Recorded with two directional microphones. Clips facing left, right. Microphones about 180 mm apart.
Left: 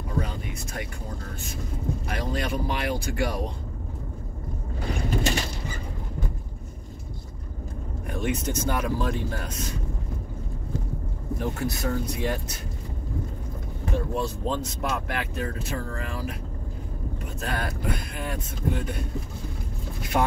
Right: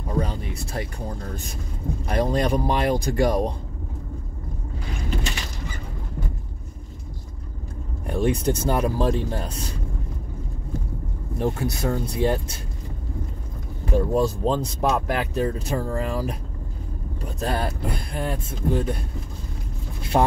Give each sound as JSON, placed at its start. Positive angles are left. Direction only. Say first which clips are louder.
{"t": 0.2, "sound": "a sound", "louder": "right 5 dB", "side_deg": -35}
{"t": 2.0, "sound": "speech", "louder": "right 9 dB", "side_deg": -40}
{"t": 8.1, "sound": "speech", "louder": "right 6 dB", "side_deg": -35}
{"t": 11.3, "sound": "speech", "louder": "right 4 dB", "side_deg": -25}
{"t": 13.9, "sound": "speech", "louder": "right 8 dB", "side_deg": -40}
{"t": 17.4, "sound": "speech", "louder": "right 5 dB", "side_deg": -30}
{"t": 20.0, "sound": "speech", "louder": "right 4 dB", "side_deg": -30}